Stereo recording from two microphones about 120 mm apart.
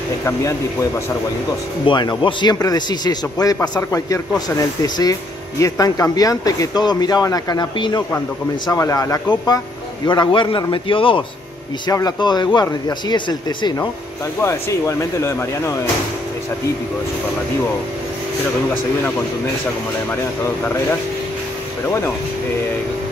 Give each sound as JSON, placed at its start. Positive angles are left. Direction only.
{"t": 0.2, "sound": "speech", "side_deg": 25}
{"t": 1.9, "sound": "speech", "side_deg": 40}
{"t": 8.6, "sound": "speech", "side_deg": 30}
{"t": 10.0, "sound": "a man's voice", "side_deg": 40}
{"t": 11.9, "sound": "speech", "side_deg": 35}
{"t": 14.4, "sound": "speech", "side_deg": 25}
{"t": 20.4, "sound": "speech", "side_deg": 15}